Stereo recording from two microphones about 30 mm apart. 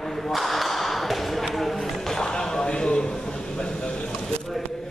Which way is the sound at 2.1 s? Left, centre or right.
Left.